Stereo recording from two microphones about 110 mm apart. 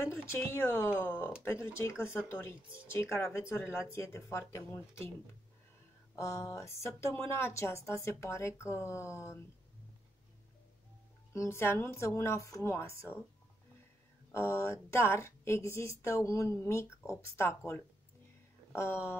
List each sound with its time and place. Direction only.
0.0 s a woman's voice: 25° left (ahead or behind)
6.1 s a woman's voice: 25° left (ahead or behind)
11.3 s a woman's voice: 20° left (ahead or behind)
14.3 s a woman's voice: 25° left (ahead or behind)